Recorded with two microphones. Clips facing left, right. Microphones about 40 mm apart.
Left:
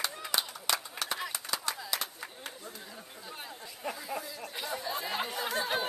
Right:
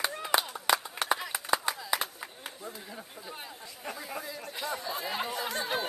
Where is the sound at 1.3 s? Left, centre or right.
Centre.